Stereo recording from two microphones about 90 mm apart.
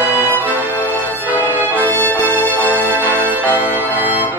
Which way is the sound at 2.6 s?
20° right (ahead or behind).